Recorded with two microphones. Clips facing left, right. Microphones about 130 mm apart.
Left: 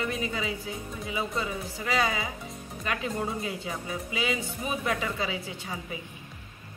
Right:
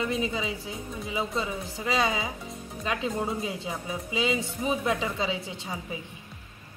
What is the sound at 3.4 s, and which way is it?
Speech, 20° right (ahead or behind).